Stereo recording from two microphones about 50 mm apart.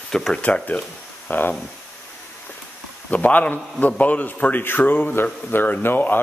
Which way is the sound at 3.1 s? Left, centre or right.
Left.